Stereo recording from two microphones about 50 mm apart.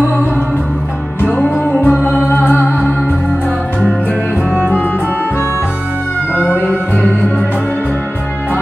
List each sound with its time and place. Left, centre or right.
1.2 s music: left
4.6 s music: left
6.5 s music: left